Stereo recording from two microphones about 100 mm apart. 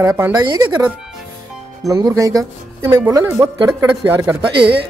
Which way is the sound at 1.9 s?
35° right (ahead or behind).